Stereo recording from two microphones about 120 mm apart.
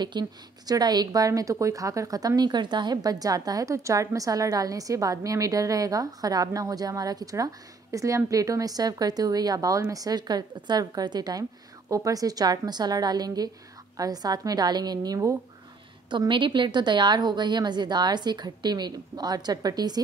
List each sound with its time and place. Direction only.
0.0 s speech: 35° right (ahead or behind)
16.1 s speech: 40° right (ahead or behind)